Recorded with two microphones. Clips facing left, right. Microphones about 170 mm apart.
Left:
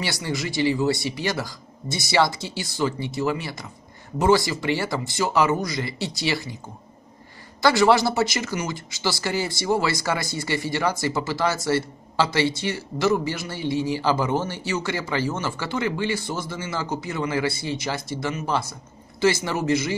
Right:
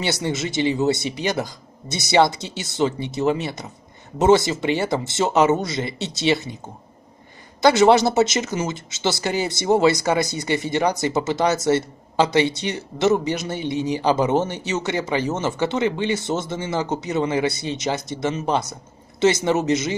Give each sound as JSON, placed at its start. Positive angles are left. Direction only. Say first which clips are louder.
{"t": 0.0, "sound": "speech", "louder": "right 4 dB", "side_deg": -20}
{"t": 7.6, "sound": "speech", "louder": "right 4 dB", "side_deg": -20}